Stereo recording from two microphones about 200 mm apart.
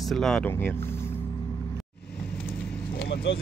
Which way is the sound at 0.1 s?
5° left (ahead or behind).